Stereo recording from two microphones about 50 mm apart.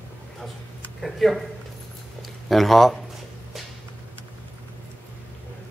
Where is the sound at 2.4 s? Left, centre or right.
Centre.